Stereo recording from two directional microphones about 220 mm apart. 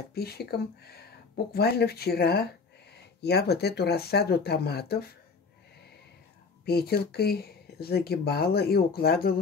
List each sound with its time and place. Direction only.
0.1 s speech: 45° left (ahead or behind)
6.6 s speech: 45° left (ahead or behind)